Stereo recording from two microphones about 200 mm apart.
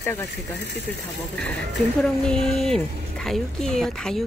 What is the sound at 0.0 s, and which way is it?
Speech, 15° left (ahead or behind).